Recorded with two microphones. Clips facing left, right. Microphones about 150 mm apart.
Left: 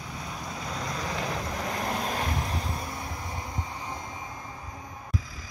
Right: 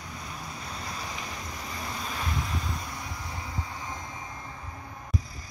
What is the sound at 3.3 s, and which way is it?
Vehicle, 20° left (ahead or behind).